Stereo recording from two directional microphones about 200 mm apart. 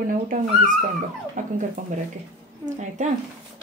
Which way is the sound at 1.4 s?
40° right (ahead or behind).